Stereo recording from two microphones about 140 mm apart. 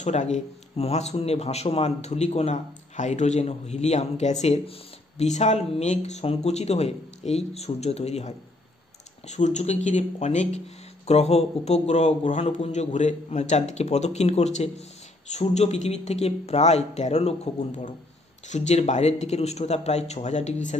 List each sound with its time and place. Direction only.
0.0 s speech: 55° left (ahead or behind)